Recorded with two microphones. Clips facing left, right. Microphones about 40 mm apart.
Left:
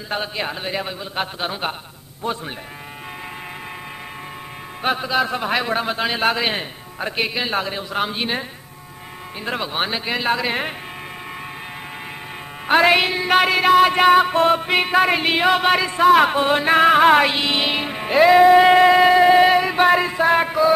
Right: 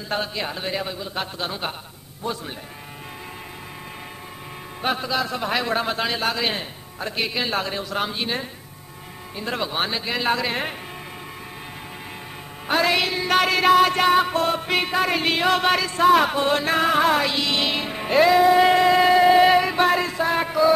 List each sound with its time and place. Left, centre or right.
0.1 s music: centre
4.8 s a man's voice: centre
6.1 s music: left
7.3 s a man's voice: centre
12.6 s a man's voice: left
14.3 s music: left